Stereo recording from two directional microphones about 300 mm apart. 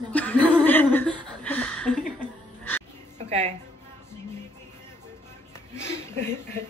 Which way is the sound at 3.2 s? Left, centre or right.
Right.